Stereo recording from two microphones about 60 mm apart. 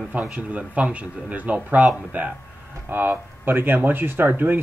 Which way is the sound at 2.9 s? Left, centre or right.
Right.